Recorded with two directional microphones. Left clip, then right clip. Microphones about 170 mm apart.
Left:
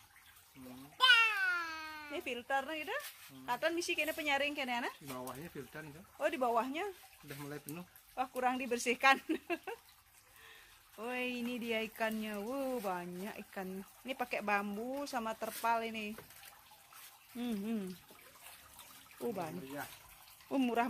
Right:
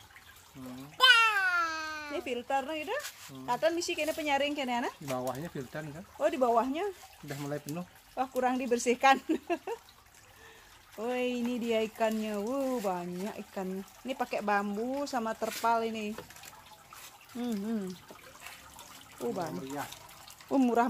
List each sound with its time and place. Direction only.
0.9 s a sound: 70° right (ahead or behind)
2.1 s speech: 5° left (ahead or behind)
5.1 s speech: 55° right (ahead or behind)
6.1 s speech: centre (ahead or behind)
7.5 s speech: 60° right (ahead or behind)
8.2 s speech: centre (ahead or behind)
11.0 s speech: 10° right (ahead or behind)
17.4 s speech: 10° left (ahead or behind)
19.2 s speech: 15° left (ahead or behind)
20.4 s speech: 10° right (ahead or behind)